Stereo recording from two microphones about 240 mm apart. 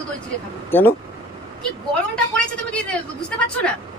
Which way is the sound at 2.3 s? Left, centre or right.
Centre.